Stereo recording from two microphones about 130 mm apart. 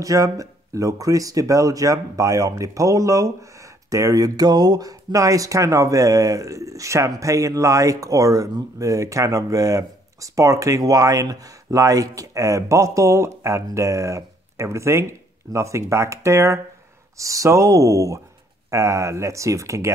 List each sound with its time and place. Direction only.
0.0 s speech: 25° right (ahead or behind)